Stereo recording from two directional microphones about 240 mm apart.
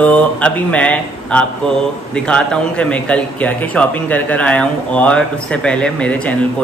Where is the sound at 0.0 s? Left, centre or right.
Centre.